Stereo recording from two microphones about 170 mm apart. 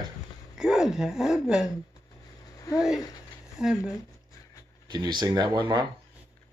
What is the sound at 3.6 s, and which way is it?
Speech, 5° right (ahead or behind).